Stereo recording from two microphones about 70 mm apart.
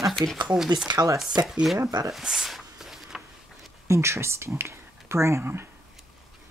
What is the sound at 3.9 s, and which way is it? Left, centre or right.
Speech, right.